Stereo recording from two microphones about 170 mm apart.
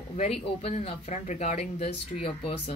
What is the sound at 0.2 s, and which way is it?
A woman's voice, 40° left (ahead or behind).